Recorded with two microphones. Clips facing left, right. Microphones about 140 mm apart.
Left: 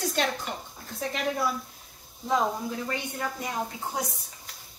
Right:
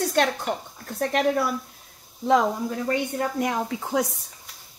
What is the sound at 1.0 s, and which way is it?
Speech, 60° right (ahead or behind).